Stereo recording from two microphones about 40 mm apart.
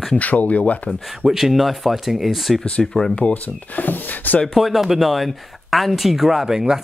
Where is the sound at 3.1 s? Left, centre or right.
Left.